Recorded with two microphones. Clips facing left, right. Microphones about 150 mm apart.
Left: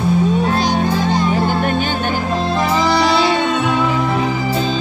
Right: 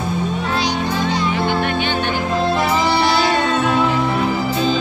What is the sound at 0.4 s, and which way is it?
Music, 45° left (ahead or behind).